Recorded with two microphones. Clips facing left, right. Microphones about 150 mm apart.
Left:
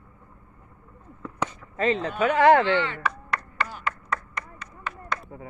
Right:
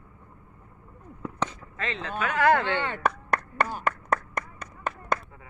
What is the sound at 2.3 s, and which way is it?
Speech, 25° left (ahead or behind).